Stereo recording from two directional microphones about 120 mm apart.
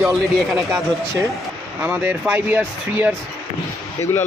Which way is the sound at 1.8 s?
15° right (ahead or behind).